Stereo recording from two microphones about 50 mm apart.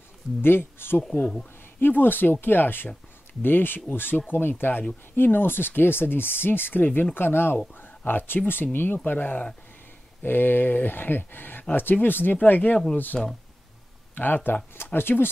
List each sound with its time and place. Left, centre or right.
0.4 s speech: left
1.2 s speech: centre
1.8 s speech: left
7.8 s a sound: left
8.7 s speech: left